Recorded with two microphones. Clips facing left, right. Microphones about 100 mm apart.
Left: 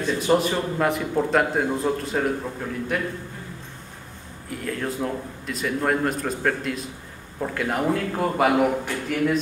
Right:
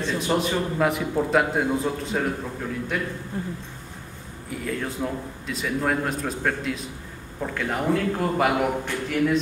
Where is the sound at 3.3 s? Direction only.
35° right (ahead or behind).